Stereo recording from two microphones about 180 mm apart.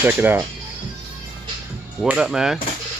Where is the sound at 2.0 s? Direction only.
5° right (ahead or behind).